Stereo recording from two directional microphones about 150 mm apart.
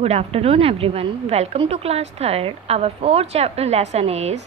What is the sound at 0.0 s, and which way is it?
A woman's voice, 45° right (ahead or behind).